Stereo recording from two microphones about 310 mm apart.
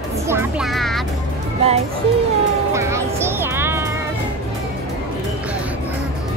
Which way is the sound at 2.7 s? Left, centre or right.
Centre.